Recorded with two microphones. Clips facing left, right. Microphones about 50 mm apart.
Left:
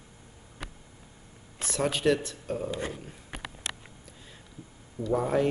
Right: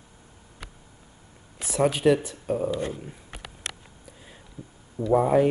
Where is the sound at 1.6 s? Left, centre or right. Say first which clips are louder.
Right 5 dB; centre.